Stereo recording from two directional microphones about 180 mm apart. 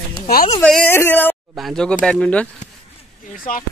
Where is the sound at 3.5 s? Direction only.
45° left (ahead or behind).